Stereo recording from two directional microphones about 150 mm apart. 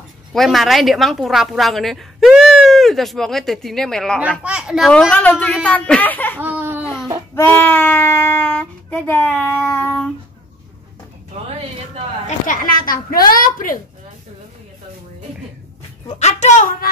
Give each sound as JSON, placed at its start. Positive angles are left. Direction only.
{"t": 0.3, "sound": "a woman's voice", "side_deg": 0}
{"t": 4.4, "sound": "speech", "side_deg": -5}
{"t": 6.4, "sound": "laughter", "side_deg": -15}
{"t": 7.3, "sound": "speech", "side_deg": 15}
{"t": 12.3, "sound": "a woman's voice", "side_deg": 70}
{"t": 16.2, "sound": "a woman's voice", "side_deg": 50}